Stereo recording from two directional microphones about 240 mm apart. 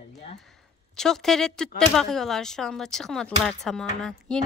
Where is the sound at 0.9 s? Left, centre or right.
Centre.